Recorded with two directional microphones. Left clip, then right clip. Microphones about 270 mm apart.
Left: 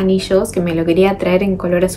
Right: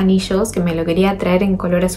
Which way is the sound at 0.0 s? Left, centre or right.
Centre.